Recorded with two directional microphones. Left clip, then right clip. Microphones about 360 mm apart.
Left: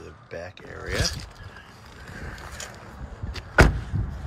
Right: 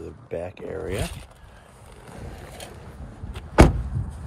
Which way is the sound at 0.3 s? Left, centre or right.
Centre.